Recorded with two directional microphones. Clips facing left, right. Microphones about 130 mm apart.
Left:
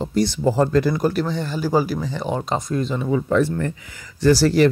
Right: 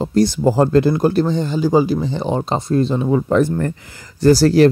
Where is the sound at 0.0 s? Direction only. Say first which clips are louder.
Right 5 dB; 40° right (ahead or behind).